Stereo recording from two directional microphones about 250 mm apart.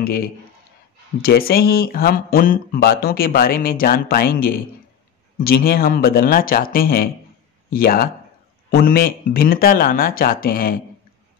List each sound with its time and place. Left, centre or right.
1.2 s speech: left